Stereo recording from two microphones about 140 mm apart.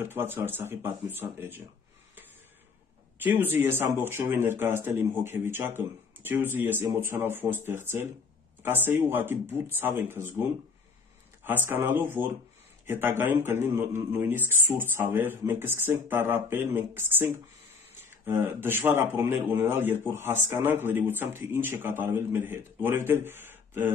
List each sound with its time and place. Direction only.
0.0 s speech: 15° right (ahead or behind)
3.2 s speech: 15° right (ahead or behind)
11.4 s speech: 15° right (ahead or behind)